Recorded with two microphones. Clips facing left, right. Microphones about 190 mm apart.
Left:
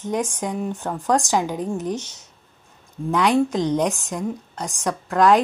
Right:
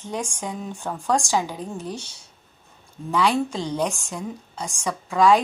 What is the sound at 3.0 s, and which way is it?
A woman's voice, 15° left (ahead or behind).